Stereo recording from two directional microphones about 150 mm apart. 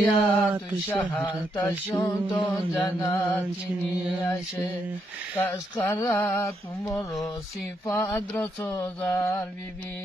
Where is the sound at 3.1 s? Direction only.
20° left (ahead or behind).